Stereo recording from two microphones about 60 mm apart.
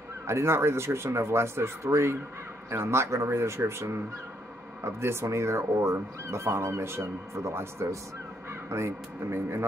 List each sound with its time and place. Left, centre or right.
0.3 s speech: right